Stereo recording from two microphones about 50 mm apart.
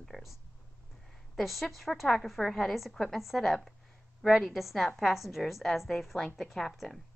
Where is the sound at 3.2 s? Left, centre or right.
Centre.